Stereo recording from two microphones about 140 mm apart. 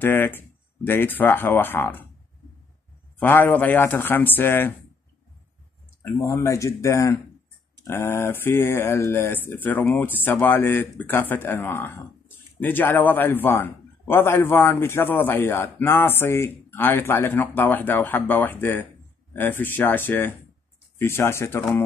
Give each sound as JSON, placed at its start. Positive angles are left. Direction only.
{"t": 0.0, "sound": "speech", "side_deg": 15}
{"t": 3.2, "sound": "speech", "side_deg": 15}
{"t": 6.0, "sound": "speech", "side_deg": 20}